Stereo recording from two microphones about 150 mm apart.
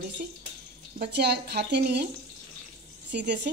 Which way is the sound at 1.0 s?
90° right.